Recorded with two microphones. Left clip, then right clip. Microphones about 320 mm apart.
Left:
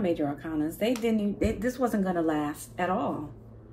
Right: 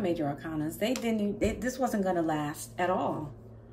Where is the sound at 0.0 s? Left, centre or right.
Centre.